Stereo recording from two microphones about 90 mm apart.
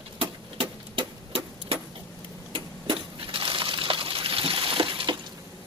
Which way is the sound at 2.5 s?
75° right (ahead or behind).